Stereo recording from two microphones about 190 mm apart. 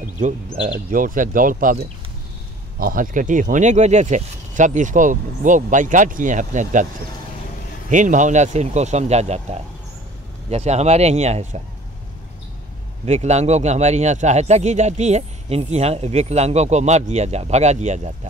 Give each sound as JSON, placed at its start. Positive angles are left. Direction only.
{"t": 0.8, "sound": "a man's voice", "side_deg": -45}
{"t": 7.9, "sound": "a man's voice", "side_deg": -40}
{"t": 13.0, "sound": "a man's voice", "side_deg": -35}